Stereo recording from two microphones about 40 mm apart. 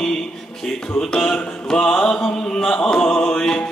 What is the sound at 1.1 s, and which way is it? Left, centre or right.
Mantra, centre.